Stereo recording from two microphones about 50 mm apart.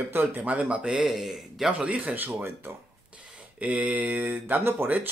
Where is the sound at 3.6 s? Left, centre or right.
Right.